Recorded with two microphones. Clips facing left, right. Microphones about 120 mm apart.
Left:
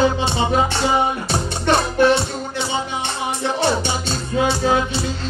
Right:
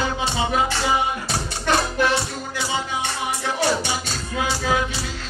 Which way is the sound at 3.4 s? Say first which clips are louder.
Left 3 dB; 25° left (ahead or behind).